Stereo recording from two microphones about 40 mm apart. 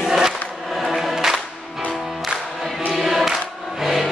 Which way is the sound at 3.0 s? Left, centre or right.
Centre.